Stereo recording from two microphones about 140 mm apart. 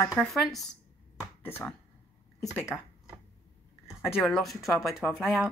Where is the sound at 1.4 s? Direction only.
15° left (ahead or behind).